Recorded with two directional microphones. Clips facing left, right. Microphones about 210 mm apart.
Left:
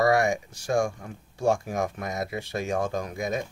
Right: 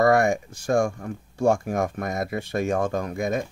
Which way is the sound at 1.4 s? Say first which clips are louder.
Right 3 dB; 55° right (ahead or behind).